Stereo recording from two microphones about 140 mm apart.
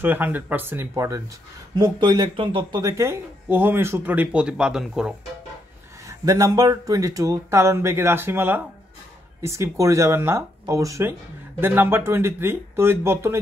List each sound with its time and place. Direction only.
0.0 s a man's voice: 15° right (ahead or behind)
1.8 s a man's voice: 30° right (ahead or behind); by 5.1 s 5° right (ahead or behind)
6.0 s a man's voice: 25° right (ahead or behind)